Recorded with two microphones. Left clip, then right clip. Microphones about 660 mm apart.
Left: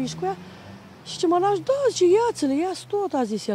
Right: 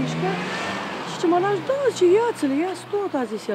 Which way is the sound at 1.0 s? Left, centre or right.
Left.